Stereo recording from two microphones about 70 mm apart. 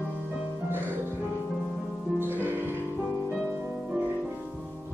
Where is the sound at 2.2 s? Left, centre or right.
Right.